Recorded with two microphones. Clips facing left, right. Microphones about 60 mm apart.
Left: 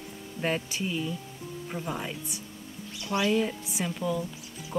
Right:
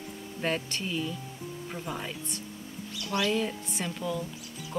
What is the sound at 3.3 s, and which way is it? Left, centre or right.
Speech, centre.